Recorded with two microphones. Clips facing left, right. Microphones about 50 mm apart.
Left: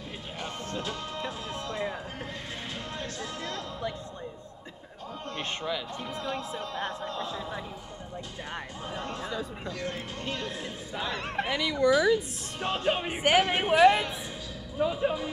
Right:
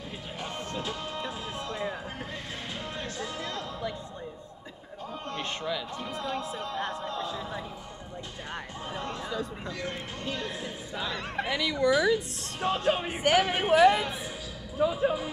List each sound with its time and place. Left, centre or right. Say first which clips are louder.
5.3 s a sound: even; left
7.2 s a sound: even; centre
9.2 s chatter: right 1 dB; centre
11.0 s speech: left 1 dB; left
11.4 s speech: left 1 dB; centre
14.8 s music: right 1 dB; centre